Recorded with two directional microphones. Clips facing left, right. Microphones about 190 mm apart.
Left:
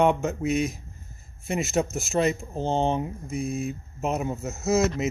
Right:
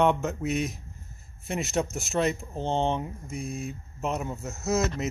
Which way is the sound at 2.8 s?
35° left (ahead or behind).